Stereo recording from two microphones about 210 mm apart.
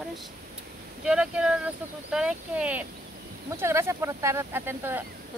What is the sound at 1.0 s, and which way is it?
Speech, 5° right (ahead or behind).